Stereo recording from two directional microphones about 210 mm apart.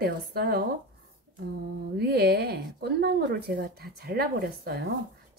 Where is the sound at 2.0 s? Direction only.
50° right (ahead or behind).